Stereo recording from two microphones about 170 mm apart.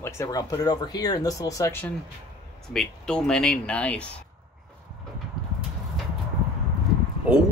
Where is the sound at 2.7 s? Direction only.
5° left (ahead or behind).